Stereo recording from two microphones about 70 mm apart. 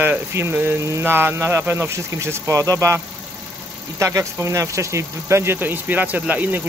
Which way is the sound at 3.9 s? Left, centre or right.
Right.